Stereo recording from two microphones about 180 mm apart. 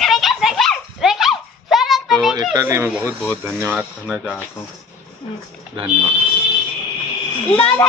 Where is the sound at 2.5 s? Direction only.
15° right (ahead or behind).